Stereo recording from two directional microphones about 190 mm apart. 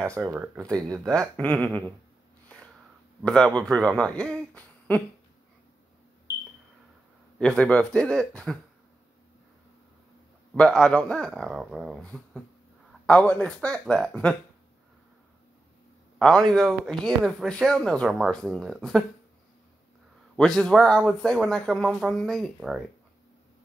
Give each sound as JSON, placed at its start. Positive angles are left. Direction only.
{"t": 0.2, "sound": "speech", "side_deg": -10}
{"t": 1.3, "sound": "speech", "side_deg": 5}
{"t": 2.4, "sound": "a sound", "side_deg": 5}
{"t": 3.3, "sound": "speech", "side_deg": 5}
{"t": 7.3, "sound": "speech", "side_deg": 5}
{"t": 10.5, "sound": "speech", "side_deg": 5}
{"t": 16.2, "sound": "speech", "side_deg": 5}
{"t": 20.3, "sound": "speech", "side_deg": 5}